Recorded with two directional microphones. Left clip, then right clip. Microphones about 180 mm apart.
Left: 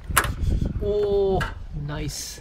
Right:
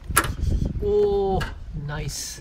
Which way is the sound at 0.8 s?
5° left (ahead or behind).